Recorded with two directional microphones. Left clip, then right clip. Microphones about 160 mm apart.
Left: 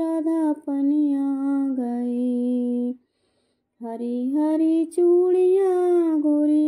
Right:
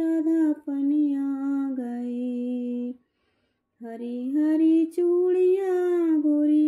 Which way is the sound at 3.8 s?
35° left (ahead or behind).